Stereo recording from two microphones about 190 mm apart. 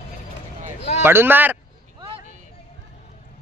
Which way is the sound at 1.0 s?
10° right (ahead or behind).